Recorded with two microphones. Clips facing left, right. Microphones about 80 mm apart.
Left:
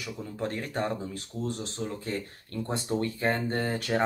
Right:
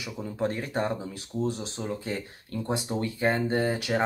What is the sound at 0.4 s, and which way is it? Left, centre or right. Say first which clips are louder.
Speech: right 3 dB; centre.